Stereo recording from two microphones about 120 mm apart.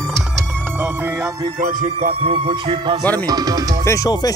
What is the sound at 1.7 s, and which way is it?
Music, 80° right.